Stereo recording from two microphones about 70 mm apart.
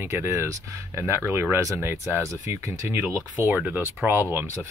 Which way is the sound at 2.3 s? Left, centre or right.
Right.